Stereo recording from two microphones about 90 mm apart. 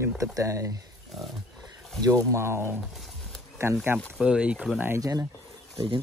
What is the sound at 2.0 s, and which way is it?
Speech, 40° right (ahead or behind).